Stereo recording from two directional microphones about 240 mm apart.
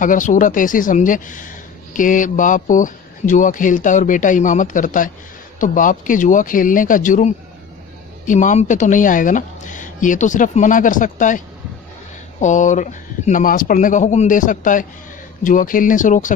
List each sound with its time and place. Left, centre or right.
0.0 s speech: left